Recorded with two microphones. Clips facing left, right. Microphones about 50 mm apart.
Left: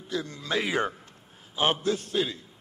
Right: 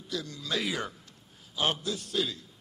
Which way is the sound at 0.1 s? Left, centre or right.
Left.